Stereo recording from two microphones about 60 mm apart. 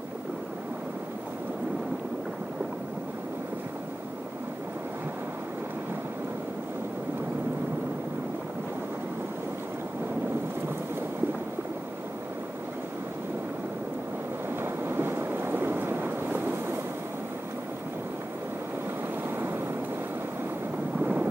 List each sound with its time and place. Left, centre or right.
14.6 s boat: right
19.2 s waves: right
21.0 s a sound: right